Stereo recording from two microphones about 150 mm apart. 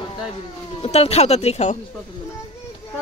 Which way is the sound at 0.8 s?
45° left (ahead or behind).